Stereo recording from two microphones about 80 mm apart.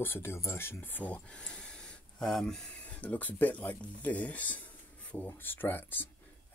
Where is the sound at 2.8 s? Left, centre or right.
Centre.